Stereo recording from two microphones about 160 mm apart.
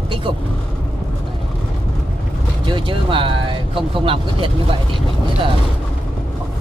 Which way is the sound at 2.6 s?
30° right (ahead or behind).